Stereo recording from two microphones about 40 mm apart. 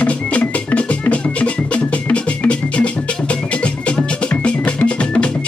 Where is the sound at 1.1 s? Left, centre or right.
Left.